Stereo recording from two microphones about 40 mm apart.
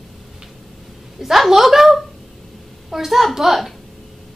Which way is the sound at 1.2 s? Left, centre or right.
Centre.